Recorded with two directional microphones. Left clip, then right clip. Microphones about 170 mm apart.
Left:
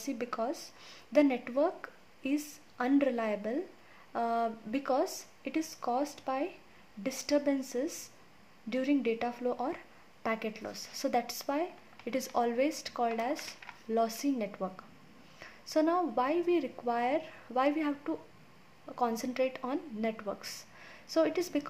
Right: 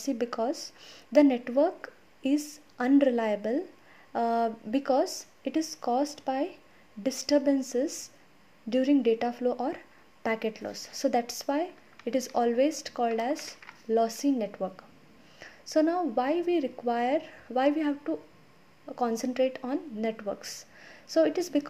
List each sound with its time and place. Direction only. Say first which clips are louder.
0.0 s speech: right 5 dB; 20° right (ahead or behind)